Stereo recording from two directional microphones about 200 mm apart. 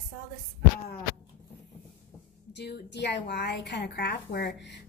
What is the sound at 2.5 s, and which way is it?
A woman's voice, 55° left (ahead or behind).